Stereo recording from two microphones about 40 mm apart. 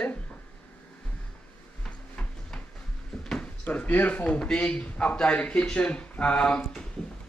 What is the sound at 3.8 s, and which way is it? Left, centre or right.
Speech, left.